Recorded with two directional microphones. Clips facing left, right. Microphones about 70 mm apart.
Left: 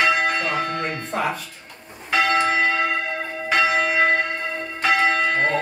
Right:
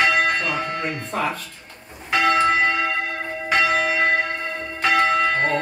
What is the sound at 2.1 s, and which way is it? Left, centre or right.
Church bell, centre.